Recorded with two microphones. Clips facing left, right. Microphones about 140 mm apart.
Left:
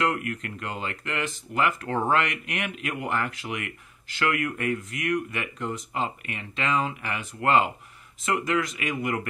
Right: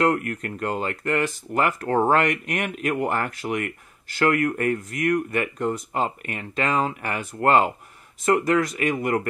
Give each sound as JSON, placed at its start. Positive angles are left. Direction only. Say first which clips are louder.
{"t": 0.0, "sound": "speech", "louder": "right 5 dB", "side_deg": -45}